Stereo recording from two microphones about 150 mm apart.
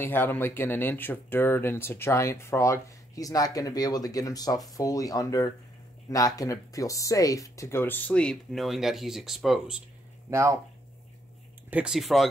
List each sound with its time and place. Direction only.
0.0 s speech: 15° left (ahead or behind); by 9.8 s 5° right (ahead or behind)
10.3 s speech: 20° right (ahead or behind)
11.7 s speech: 5° right (ahead or behind)